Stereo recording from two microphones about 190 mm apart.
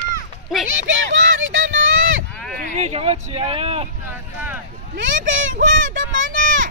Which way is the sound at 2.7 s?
35° right (ahead or behind).